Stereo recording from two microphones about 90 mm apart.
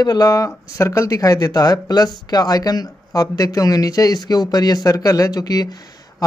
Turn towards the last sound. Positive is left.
turn(degrees=45)  # may be behind; listen again after turning